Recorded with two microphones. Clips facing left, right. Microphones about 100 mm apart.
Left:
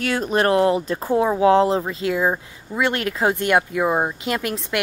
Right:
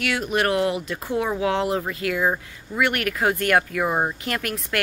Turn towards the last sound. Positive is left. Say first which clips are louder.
# left 2 dB
turn(degrees=20)  # may be behind; listen again after turning